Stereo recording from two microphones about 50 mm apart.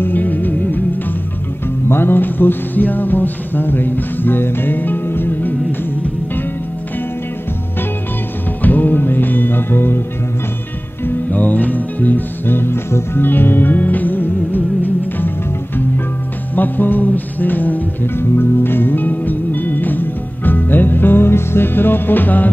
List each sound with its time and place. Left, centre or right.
0.0 s music: left
1.9 s music: left
8.6 s music: left
11.1 s music: left
12.5 s music: left
16.5 s music: left
18.1 s music: left